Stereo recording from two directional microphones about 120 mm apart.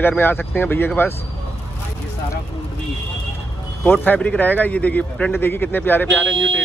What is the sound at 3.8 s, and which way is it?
Speech, 15° left (ahead or behind).